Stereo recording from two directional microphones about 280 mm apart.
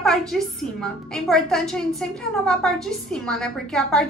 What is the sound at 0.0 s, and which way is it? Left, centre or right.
A woman's voice, centre.